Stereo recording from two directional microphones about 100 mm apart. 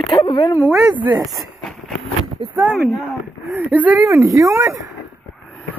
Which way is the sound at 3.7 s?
15° right (ahead or behind).